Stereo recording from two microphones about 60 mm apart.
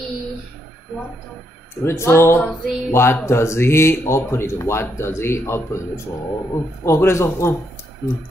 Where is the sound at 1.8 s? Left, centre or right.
Left.